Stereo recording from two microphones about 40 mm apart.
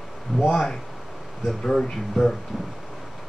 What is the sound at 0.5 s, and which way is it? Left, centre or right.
Speech, centre.